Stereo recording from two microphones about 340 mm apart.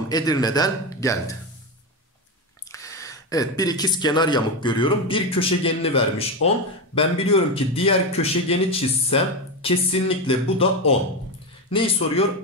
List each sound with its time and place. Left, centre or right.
0.1 s speech: centre
2.7 s speech: centre